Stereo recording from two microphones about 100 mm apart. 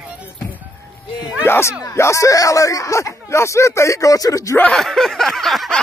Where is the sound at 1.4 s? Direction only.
25° left (ahead or behind).